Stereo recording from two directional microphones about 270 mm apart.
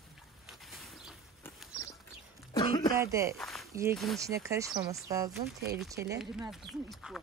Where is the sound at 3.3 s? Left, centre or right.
Centre.